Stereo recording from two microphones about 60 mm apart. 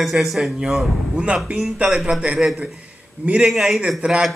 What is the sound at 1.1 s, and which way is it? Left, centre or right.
Speech, centre.